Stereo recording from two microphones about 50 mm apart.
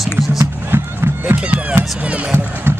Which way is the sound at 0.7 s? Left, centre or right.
Right.